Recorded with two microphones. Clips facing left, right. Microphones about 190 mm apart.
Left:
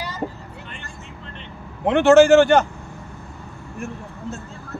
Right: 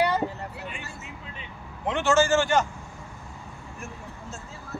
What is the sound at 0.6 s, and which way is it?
Vehicle, 5° right (ahead or behind).